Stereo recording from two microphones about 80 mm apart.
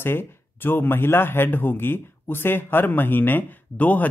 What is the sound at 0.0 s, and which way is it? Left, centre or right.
A man's voice, left.